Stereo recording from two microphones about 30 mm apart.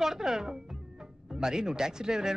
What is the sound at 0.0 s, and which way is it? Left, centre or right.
Speech, centre.